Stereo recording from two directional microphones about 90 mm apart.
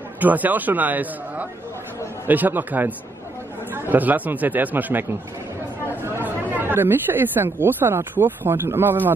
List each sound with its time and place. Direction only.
0.2 s a man's voice: 20° right (ahead or behind)